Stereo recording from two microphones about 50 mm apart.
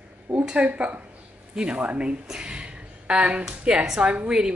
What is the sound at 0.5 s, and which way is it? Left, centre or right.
A woman's voice, right.